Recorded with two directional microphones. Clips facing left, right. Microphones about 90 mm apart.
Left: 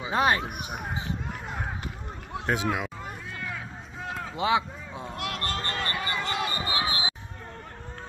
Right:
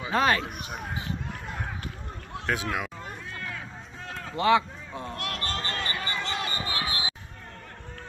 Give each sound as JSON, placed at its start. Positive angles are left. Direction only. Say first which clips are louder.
{"t": 0.0, "sound": "run", "louder": "even", "side_deg": 15}
{"t": 2.3, "sound": "speech", "louder": "left 2 dB", "side_deg": 20}
{"t": 4.0, "sound": "a sound", "louder": "right 2 dB", "side_deg": 10}
{"t": 6.8, "sound": "basketball bounce", "louder": "left 2 dB", "side_deg": 20}